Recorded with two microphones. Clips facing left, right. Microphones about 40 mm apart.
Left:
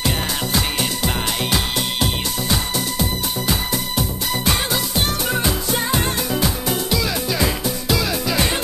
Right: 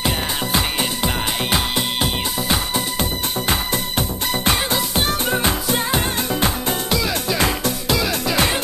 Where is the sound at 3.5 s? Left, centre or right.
Right.